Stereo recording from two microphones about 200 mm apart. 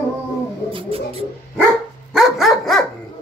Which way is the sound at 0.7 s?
25° right (ahead or behind).